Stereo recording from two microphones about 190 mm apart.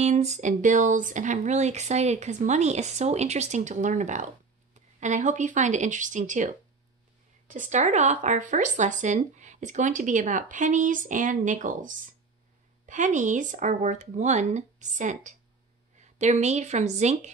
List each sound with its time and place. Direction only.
0.0 s speech: 35° right (ahead or behind)